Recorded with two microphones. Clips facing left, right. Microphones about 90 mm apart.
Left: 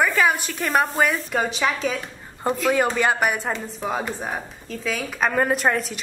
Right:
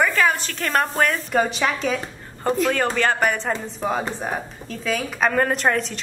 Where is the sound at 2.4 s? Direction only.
10° left (ahead or behind).